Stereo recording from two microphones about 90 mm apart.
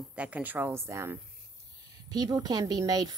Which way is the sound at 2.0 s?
45° right (ahead or behind).